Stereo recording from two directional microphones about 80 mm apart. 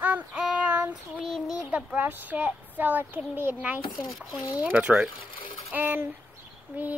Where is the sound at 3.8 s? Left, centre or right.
Left.